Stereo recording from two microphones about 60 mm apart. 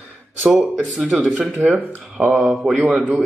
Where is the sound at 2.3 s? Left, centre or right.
Centre.